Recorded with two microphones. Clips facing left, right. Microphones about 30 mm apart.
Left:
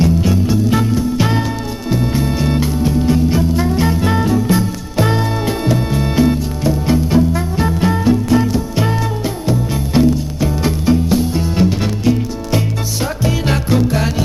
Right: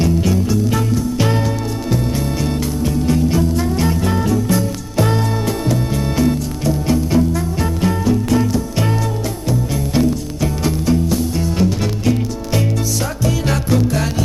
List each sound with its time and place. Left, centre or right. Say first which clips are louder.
0.0 s music: left 2 dB; centre
12.0 s music: left 3 dB; centre
13.2 s music: left 2 dB; left